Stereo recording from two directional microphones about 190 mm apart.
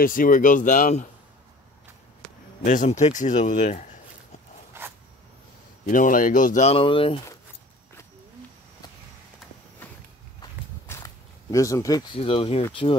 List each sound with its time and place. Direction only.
0.0 s speech: 45° left (ahead or behind)
2.6 s speech: 40° left (ahead or behind)
4.7 s zipper: 15° right (ahead or behind)
5.9 s speech: 45° left (ahead or behind); by 7.2 s 30° left (ahead or behind)
10.4 s walk: 15° left (ahead or behind)
11.5 s speech: 15° left (ahead or behind)